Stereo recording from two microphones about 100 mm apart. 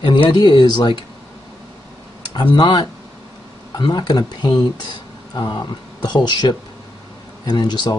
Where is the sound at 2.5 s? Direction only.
55° left (ahead or behind).